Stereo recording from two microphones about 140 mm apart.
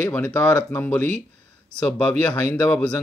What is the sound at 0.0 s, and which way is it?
Speech, 10° left (ahead or behind).